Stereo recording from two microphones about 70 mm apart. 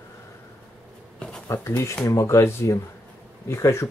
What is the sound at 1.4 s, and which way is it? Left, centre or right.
Speech, left.